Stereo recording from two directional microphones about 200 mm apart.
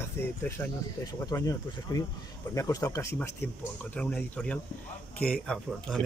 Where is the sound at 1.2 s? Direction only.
20° left (ahead or behind); by 6.0 s centre (ahead or behind).